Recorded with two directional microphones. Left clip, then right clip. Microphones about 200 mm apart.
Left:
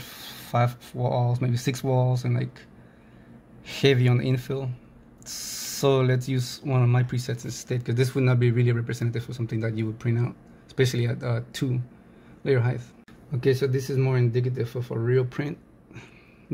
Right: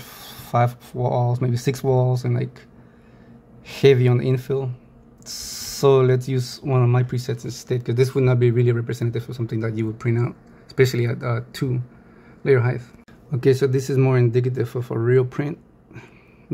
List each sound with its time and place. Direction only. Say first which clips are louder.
0.0 s speech: right 1 dB; 10° right (ahead or behind)
3.6 s speech: right 6 dB; 5° right (ahead or behind)
13.3 s speech: right 5 dB; 15° right (ahead or behind)